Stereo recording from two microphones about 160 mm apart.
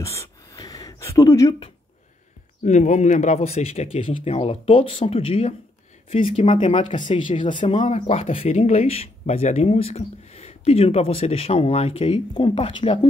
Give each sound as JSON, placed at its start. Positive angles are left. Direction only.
{"t": 0.0, "sound": "a sound", "side_deg": 20}
{"t": 2.6, "sound": "speech", "side_deg": 50}
{"t": 7.7, "sound": "speech", "side_deg": 45}